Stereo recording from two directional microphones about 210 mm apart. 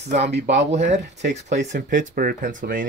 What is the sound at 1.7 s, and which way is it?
Speech, 35° right (ahead or behind).